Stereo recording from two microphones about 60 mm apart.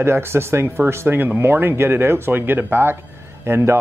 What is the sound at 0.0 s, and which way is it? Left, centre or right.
Speech, right.